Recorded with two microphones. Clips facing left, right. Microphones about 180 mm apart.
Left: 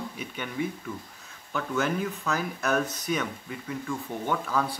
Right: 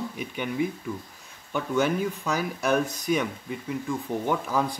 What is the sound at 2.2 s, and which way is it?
Speech, 15° right (ahead or behind).